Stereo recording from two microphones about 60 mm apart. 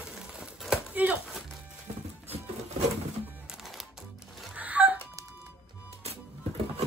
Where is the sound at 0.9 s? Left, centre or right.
Right.